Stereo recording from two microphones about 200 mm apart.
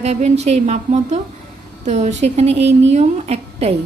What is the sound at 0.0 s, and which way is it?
A woman's voice, 35° right (ahead or behind).